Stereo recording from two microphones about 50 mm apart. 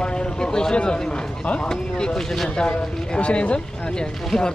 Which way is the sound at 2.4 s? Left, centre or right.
Left.